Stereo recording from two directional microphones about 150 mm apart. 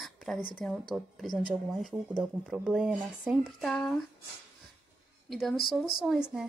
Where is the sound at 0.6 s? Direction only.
5° left (ahead or behind).